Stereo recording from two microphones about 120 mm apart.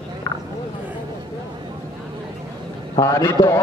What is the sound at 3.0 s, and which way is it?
Speech, 25° left (ahead or behind).